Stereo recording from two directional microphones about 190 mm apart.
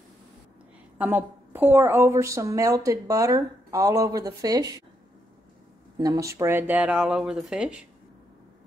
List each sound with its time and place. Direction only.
0.9 s a woman's voice: 10° right (ahead or behind)
5.9 s speech: 20° right (ahead or behind); by 7.8 s 5° right (ahead or behind)